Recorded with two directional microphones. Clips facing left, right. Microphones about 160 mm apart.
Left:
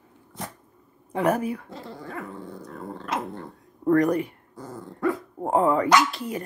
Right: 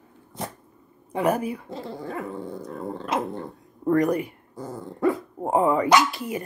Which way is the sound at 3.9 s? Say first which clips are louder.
Left 1 dB; 5° right (ahead or behind).